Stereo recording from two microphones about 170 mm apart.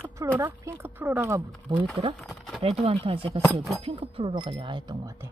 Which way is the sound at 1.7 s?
30° right (ahead or behind).